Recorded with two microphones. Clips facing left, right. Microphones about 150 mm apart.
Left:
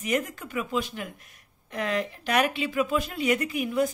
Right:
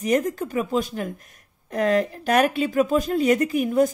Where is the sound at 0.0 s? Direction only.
35° right (ahead or behind).